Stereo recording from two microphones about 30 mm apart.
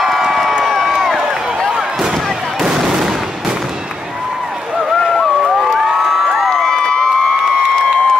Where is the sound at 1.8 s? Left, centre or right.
Centre.